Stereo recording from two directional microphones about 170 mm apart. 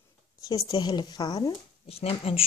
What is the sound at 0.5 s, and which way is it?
A woman's voice, 25° left (ahead or behind).